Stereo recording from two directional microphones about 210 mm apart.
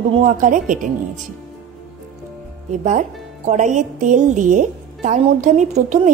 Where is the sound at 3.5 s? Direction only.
35° right (ahead or behind).